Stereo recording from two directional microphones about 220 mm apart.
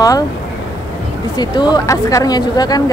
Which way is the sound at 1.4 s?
20° left (ahead or behind).